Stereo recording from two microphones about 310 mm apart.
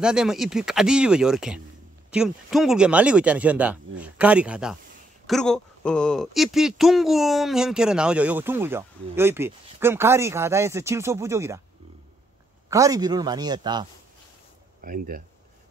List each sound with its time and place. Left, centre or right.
0.0 s speech: centre
12.6 s speech: centre
14.8 s speech: right